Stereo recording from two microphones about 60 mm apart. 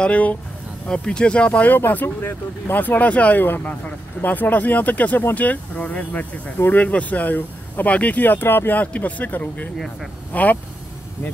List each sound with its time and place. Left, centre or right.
0.0 s speech: left
1.8 s speech: left